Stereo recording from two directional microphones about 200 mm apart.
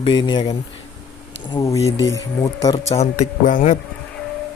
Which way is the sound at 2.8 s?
35° left (ahead or behind).